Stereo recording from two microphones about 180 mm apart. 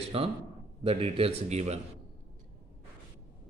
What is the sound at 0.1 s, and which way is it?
Speech, 30° right (ahead or behind).